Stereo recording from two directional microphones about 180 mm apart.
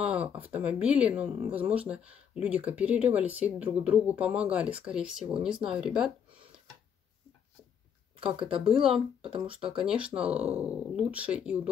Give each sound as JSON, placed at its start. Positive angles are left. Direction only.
{"t": 0.0, "sound": "speech", "side_deg": -5}
{"t": 8.2, "sound": "speech", "side_deg": -30}
{"t": 9.7, "sound": "speech", "side_deg": -5}